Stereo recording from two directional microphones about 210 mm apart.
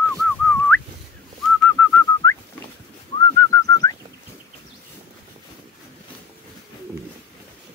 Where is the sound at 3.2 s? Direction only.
15° left (ahead or behind).